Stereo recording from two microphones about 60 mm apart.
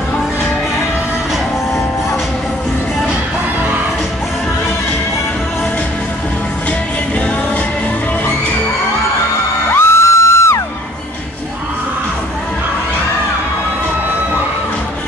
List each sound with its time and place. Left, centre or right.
9.7 s music: left